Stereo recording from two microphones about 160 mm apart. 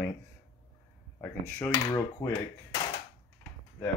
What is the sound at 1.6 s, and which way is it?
Speech, 20° left (ahead or behind).